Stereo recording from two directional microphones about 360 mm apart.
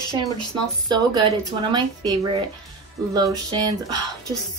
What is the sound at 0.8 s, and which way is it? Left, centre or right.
Speech, centre.